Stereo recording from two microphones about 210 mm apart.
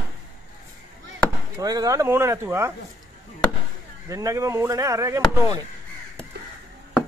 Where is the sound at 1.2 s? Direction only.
15° right (ahead or behind).